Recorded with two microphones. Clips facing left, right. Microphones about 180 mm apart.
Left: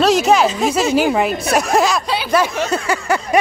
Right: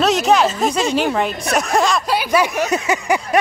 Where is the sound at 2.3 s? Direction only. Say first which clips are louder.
Left 1 dB; 15° right (ahead or behind).